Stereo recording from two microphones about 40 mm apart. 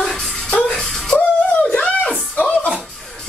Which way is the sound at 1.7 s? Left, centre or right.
Left.